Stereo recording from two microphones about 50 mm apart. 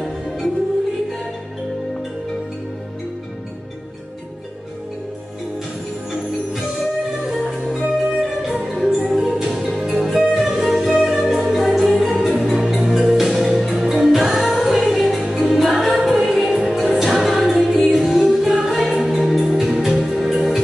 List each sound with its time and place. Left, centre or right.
6.5 s music: centre